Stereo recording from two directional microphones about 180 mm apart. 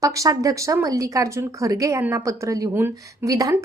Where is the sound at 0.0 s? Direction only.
20° right (ahead or behind).